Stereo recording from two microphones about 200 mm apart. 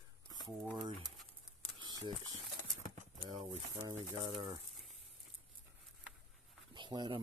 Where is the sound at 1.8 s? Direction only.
20° right (ahead or behind).